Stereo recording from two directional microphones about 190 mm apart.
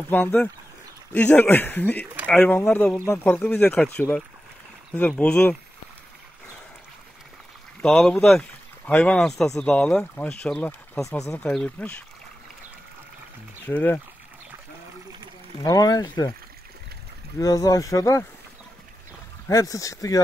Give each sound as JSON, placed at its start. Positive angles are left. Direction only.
{"t": 0.1, "sound": "speech", "side_deg": 5}
{"t": 7.8, "sound": "speech", "side_deg": 0}
{"t": 11.1, "sound": "speech", "side_deg": 15}
{"t": 11.4, "sound": "speech", "side_deg": 5}
{"t": 13.7, "sound": "speech", "side_deg": 10}
{"t": 15.6, "sound": "speech", "side_deg": 20}
{"t": 17.4, "sound": "speech", "side_deg": 20}
{"t": 19.5, "sound": "speech", "side_deg": 15}